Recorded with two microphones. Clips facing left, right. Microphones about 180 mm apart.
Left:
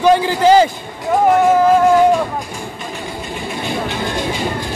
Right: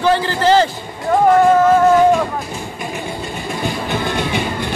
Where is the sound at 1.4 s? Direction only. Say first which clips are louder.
Right 1 dB; 10° left (ahead or behind).